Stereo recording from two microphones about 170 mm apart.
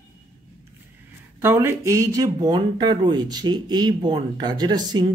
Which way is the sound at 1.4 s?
15° right (ahead or behind).